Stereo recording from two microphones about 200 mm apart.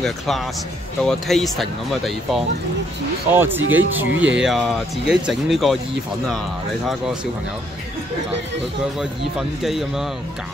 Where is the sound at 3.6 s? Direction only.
80° right.